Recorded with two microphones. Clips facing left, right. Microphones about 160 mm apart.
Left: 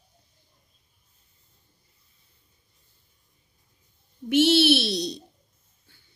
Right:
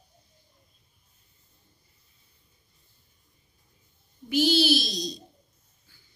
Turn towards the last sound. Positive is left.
turn(degrees=65)  # may be behind; listen again after turning